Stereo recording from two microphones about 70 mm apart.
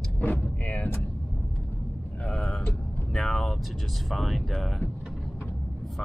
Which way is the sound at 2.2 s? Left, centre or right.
Centre.